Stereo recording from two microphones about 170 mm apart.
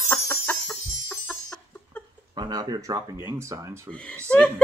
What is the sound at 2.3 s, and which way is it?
Speech, 25° right (ahead or behind).